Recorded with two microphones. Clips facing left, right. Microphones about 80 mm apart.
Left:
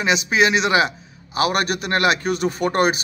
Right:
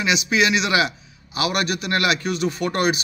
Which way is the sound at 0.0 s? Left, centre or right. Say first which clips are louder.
Left 2 dB; left.